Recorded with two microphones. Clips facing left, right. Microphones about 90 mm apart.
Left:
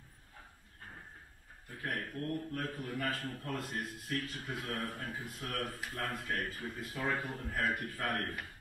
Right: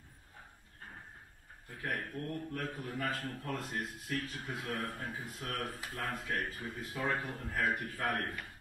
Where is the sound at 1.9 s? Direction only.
10° right (ahead or behind).